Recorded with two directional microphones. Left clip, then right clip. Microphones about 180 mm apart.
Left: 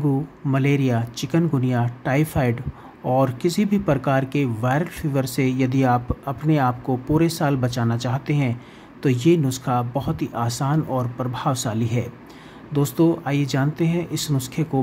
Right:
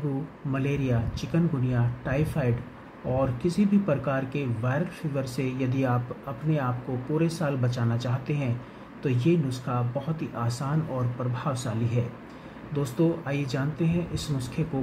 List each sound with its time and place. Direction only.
0.5 s speech: 30° left (ahead or behind)